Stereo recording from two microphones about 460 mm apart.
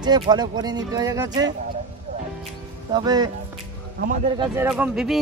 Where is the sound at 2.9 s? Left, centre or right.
Centre.